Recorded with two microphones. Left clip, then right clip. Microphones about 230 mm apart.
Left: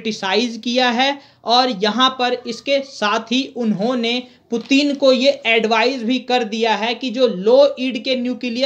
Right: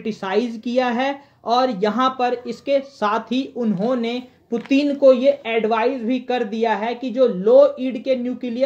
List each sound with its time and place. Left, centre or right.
0.0 s a woman's voice: centre